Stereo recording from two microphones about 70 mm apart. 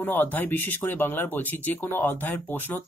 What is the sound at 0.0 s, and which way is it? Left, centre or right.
Speech, left.